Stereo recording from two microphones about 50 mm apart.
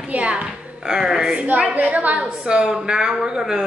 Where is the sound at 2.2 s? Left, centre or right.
Centre.